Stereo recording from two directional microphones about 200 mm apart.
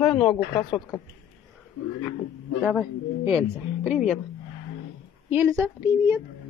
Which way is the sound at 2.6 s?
5° right (ahead or behind).